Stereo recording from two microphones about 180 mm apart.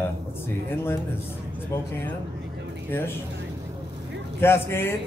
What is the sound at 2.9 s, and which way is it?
Speech, 10° left (ahead or behind).